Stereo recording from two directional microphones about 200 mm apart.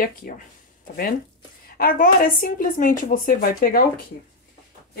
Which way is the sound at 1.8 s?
45° left (ahead or behind).